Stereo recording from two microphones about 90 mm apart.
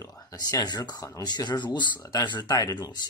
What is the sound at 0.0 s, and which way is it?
Speech, 45° left (ahead or behind).